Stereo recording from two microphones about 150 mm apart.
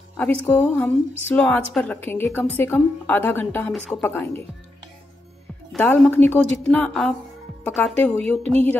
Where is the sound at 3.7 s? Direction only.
Centre (ahead or behind).